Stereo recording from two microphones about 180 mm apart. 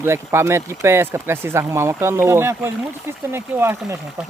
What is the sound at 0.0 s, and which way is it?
Speech, 15° right (ahead or behind).